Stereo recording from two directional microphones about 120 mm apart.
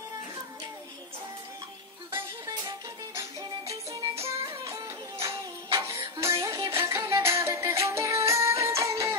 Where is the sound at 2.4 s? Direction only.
30° right (ahead or behind).